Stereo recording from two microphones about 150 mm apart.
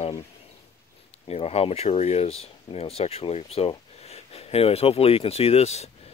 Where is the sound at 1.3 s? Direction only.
45° left (ahead or behind).